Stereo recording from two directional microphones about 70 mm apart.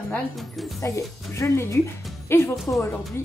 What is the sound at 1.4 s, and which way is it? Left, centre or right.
Speech, left.